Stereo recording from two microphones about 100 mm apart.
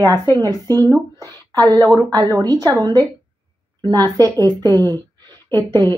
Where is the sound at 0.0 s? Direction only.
35° right (ahead or behind).